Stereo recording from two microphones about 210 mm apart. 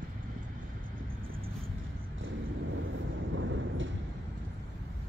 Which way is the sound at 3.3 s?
65° right (ahead or behind).